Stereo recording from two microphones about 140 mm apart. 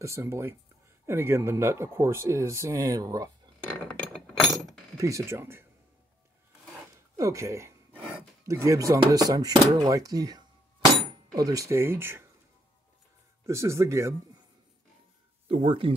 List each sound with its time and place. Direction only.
0.0 s speech: 20° right (ahead or behind)
3.6 s a sound: 5° left (ahead or behind)
4.9 s speech: 20° right (ahead or behind)
7.2 s speech: 20° right (ahead or behind)
13.5 s speech: 20° right (ahead or behind)